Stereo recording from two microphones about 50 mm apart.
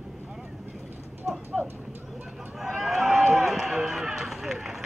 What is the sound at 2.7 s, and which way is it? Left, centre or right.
Run, centre.